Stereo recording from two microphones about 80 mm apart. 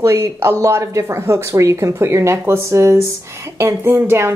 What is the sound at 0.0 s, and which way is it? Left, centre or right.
Speech, right.